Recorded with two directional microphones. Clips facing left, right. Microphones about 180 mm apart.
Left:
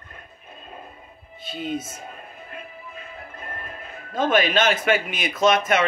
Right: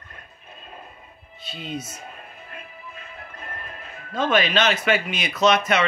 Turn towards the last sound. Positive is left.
turn(degrees=50)  # may be behind; listen again after turning